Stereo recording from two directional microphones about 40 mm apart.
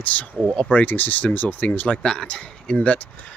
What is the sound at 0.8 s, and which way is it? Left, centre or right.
Speech, left.